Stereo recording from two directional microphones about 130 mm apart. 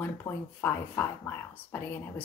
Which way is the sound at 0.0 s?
20° left (ahead or behind).